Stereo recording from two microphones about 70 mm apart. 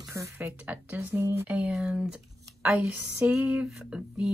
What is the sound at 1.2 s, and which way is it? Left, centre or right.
Speech, right.